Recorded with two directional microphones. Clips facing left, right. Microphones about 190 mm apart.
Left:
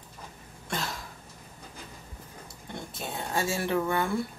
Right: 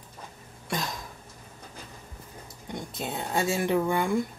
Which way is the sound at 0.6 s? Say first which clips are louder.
Right 2 dB; 15° right (ahead or behind).